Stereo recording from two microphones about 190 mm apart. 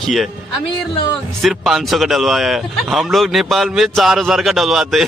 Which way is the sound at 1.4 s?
Centre (ahead or behind).